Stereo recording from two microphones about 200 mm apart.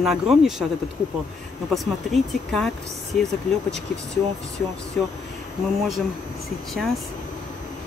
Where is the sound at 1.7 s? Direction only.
Centre (ahead or behind).